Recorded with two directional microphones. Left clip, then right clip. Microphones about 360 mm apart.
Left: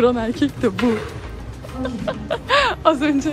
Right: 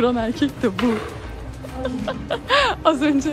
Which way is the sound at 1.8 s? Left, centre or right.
Centre.